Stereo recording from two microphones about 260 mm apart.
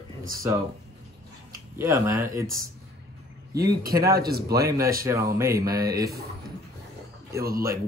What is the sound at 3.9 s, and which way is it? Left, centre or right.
Speech, centre.